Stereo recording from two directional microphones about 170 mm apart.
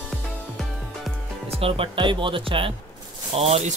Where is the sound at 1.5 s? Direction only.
35° right (ahead or behind).